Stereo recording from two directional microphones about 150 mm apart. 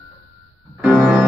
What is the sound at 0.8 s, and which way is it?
Music, 10° right (ahead or behind).